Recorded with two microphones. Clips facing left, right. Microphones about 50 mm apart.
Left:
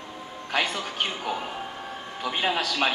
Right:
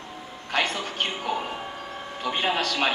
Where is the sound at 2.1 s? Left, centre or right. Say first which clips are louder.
Right 1 dB; centre.